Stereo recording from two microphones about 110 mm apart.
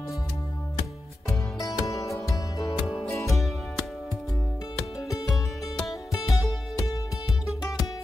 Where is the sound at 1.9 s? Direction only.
30° left (ahead or behind).